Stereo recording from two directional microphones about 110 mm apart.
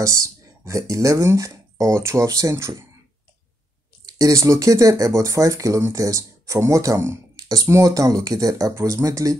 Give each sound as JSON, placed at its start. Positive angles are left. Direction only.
{"t": 0.0, "sound": "speech", "side_deg": -30}
{"t": 4.0, "sound": "speech", "side_deg": -30}